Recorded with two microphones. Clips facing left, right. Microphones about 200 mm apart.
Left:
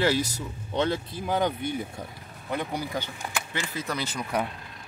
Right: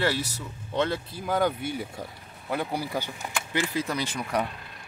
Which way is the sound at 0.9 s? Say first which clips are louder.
Left 1 dB; 20° left (ahead or behind).